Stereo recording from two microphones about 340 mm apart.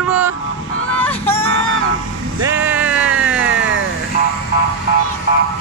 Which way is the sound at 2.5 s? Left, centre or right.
Centre.